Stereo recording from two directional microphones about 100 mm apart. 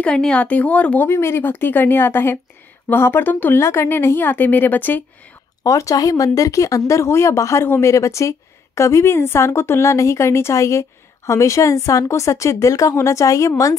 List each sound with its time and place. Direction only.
0.0 s speech: 10° left (ahead or behind)
5.6 s speech: 35° left (ahead or behind)